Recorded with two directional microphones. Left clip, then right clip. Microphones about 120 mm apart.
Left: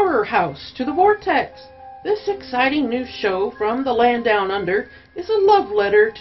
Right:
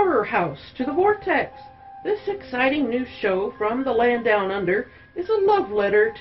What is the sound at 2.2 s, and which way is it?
Speech, 35° left (ahead or behind).